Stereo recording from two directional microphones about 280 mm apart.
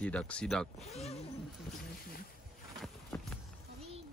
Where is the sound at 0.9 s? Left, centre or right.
Left.